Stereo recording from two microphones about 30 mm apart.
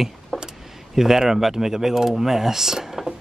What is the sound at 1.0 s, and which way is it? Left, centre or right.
Speech, centre.